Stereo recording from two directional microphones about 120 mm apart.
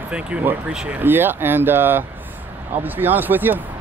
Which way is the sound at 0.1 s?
10° right (ahead or behind).